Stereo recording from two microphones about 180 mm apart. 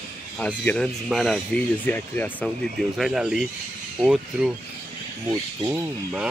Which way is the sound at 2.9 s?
5° right (ahead or behind).